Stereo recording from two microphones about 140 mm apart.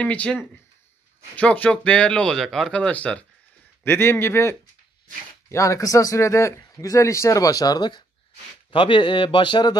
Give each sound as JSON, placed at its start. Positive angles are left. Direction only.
{"t": 0.0, "sound": "a man's voice", "side_deg": 10}